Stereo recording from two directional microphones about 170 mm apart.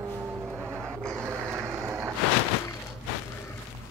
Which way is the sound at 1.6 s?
15° right (ahead or behind).